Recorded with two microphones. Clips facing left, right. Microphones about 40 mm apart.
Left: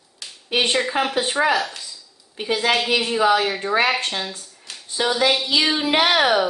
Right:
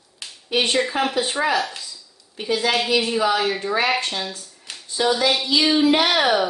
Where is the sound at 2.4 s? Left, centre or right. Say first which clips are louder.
Left 1 dB; centre.